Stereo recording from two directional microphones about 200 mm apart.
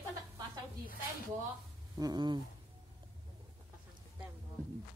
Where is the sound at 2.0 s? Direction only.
20° right (ahead or behind).